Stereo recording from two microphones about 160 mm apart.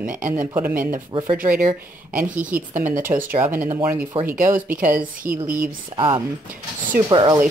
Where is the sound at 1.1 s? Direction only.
30° right (ahead or behind).